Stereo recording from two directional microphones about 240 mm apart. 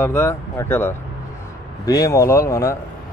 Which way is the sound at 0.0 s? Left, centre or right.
Centre.